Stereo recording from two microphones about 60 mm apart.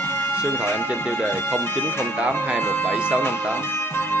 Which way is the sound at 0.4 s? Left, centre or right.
Left.